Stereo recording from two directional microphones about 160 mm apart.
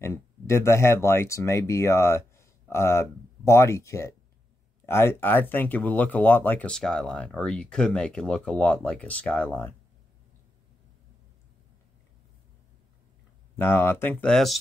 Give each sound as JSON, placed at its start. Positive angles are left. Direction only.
{"t": 0.0, "sound": "speech", "side_deg": 15}
{"t": 13.6, "sound": "speech", "side_deg": 15}